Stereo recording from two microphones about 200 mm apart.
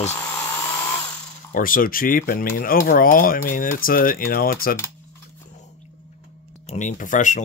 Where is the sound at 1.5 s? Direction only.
45° left (ahead or behind).